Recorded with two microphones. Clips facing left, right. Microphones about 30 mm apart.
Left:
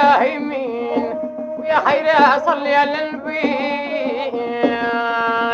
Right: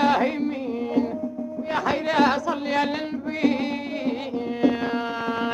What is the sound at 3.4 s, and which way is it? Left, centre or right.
Music, left.